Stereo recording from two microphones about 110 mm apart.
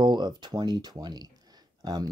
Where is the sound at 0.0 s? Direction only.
45° right (ahead or behind).